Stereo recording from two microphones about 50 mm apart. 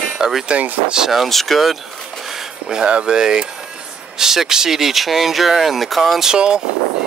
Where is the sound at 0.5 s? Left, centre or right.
Right.